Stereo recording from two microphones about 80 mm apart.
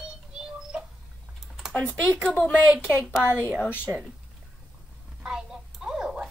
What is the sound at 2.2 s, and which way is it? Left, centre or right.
Speech, centre.